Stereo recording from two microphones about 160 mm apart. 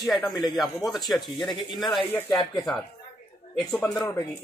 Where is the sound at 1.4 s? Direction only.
30° left (ahead or behind).